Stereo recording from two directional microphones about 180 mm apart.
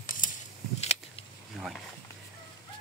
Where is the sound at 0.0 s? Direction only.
45° left (ahead or behind).